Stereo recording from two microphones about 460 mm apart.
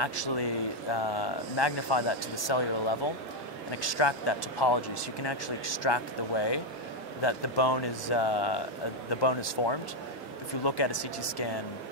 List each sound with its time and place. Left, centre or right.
0.0 s speech: left
3.7 s speech: left